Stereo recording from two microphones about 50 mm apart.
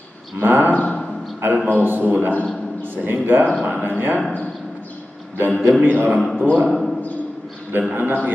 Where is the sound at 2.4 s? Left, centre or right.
Centre.